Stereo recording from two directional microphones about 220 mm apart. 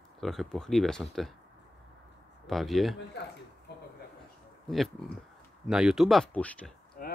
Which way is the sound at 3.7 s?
50° left (ahead or behind).